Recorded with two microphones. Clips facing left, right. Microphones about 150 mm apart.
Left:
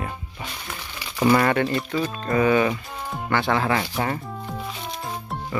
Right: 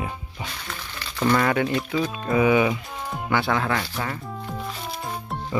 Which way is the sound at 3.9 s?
35° left (ahead or behind).